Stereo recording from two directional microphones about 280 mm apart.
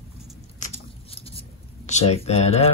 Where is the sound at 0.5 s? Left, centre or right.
Left.